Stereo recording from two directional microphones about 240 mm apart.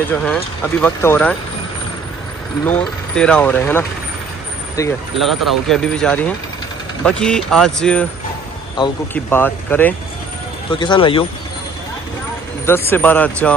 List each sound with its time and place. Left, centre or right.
0.1 s speech: centre
2.6 s speech: centre
5.1 s speech: centre
10.7 s speech: centre
12.6 s speech: centre